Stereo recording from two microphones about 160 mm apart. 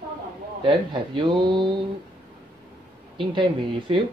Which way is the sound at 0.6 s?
30° right (ahead or behind).